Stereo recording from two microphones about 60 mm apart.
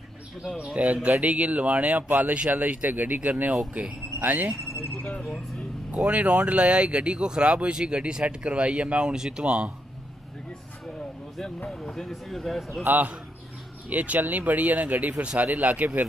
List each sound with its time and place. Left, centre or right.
0.8 s speech: right
5.2 s speech: centre
6.0 s speech: right
11.8 s speech: centre
12.8 s a man's voice: right